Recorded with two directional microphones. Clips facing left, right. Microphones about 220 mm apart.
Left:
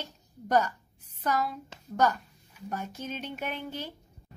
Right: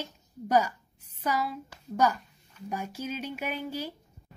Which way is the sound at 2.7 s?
10° right (ahead or behind).